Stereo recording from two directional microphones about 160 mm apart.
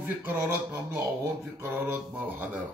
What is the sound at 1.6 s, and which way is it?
A man's voice, 10° right (ahead or behind).